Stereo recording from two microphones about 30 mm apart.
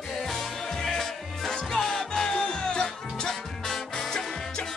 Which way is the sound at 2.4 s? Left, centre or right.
Left.